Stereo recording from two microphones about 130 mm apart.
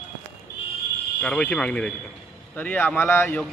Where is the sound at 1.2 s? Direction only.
5° left (ahead or behind).